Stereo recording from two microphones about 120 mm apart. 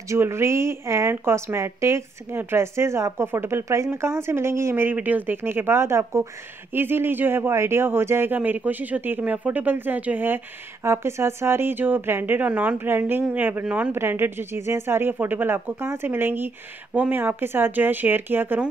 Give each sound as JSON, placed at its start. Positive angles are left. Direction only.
{"t": 0.1, "sound": "a woman's voice", "side_deg": -20}